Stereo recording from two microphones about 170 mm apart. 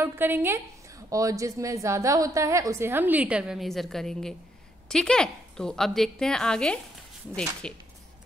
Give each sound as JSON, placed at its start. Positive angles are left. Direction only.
{"t": 0.0, "sound": "a woman's voice", "side_deg": -15}